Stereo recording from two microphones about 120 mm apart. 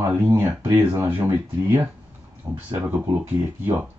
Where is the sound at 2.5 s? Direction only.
25° right (ahead or behind).